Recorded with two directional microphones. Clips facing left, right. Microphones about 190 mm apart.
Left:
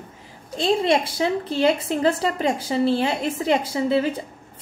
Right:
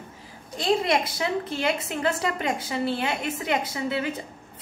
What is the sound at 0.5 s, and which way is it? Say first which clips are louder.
A woman's voice: left 3 dB; 25° left (ahead or behind).